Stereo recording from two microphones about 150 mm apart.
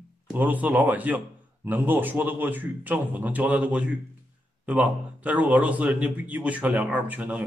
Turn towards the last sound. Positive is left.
turn(degrees=-10)  # may be behind; listen again after turning